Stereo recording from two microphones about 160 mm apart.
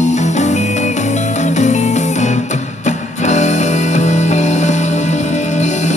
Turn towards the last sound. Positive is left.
turn(degrees=50)  # may be behind; listen again after turning